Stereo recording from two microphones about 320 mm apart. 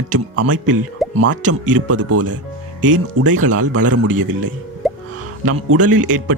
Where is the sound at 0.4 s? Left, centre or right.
Centre.